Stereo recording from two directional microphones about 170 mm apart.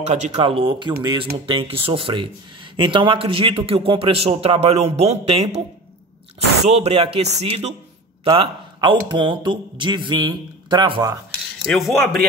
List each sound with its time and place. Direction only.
0.0 s speech: 40° right (ahead or behind)
6.6 s a man's voice: 40° right (ahead or behind)
11.6 s speech: centre (ahead or behind)